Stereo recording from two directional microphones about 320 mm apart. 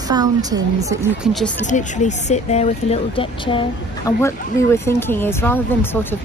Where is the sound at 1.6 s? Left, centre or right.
Left; by 6.2 s centre.